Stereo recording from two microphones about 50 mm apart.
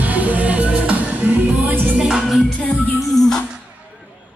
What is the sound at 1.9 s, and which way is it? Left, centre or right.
Music, centre.